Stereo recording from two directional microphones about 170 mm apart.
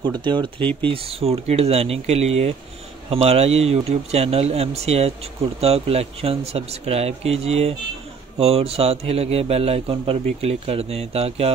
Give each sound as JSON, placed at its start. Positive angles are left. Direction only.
{"t": 0.0, "sound": "speech", "side_deg": -25}
{"t": 0.6, "sound": "speech", "side_deg": 10}
{"t": 0.8, "sound": "a man's voice", "side_deg": -35}